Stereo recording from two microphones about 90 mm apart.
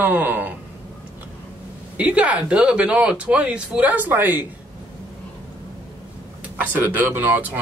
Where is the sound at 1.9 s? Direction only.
15° right (ahead or behind).